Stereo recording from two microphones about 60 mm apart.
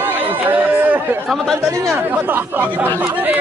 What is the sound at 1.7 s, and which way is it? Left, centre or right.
Speech, right.